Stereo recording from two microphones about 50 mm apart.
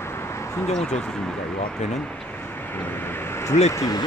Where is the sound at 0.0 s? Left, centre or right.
Left.